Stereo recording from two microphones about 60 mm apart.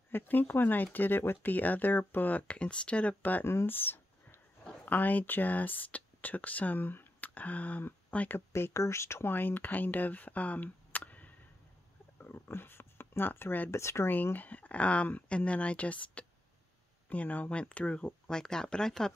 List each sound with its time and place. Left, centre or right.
0.1 s speech: left
3.2 s speech: left
3.6 s a sound: left
4.8 s speech: left
8.5 s speech: left
9.3 s speech: left
12.2 s a sound: left
12.4 s speech: left
13.7 s speech: left
14.0 s speech: left
18.3 s speech: centre